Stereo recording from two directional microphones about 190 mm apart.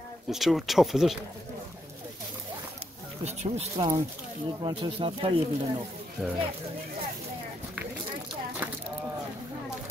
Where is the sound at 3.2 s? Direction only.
35° right (ahead or behind).